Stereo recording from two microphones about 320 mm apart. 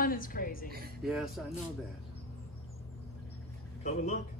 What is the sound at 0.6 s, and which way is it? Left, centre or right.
Speech, right.